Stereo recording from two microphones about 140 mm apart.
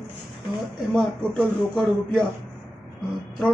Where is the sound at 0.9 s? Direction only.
5° left (ahead or behind).